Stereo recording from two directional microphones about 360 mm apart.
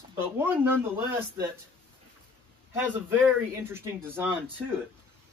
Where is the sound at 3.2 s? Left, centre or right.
Centre.